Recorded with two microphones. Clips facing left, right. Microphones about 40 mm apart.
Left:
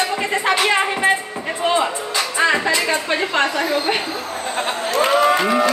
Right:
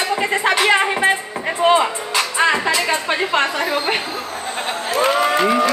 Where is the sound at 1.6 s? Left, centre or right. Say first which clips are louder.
Right 4 dB; right.